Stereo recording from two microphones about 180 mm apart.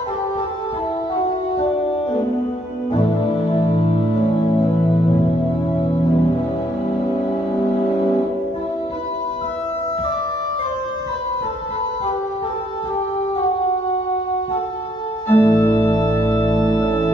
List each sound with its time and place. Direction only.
15.2 s organ: 15° left (ahead or behind)